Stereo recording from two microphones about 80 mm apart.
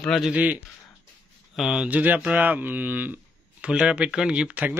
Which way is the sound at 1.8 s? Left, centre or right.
Centre.